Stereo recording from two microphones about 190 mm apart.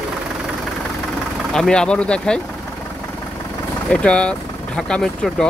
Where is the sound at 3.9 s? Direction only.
5° left (ahead or behind).